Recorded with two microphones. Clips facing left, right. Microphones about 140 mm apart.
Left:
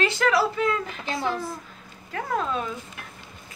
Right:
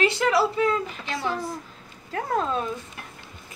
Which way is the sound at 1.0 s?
45° left (ahead or behind).